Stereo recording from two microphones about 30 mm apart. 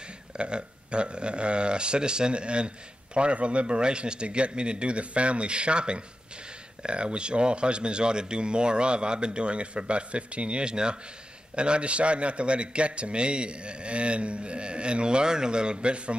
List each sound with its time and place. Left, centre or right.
0.4 s a man's voice: right